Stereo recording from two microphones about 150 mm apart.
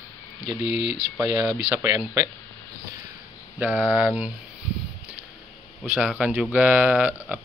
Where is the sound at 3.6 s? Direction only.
10° right (ahead or behind).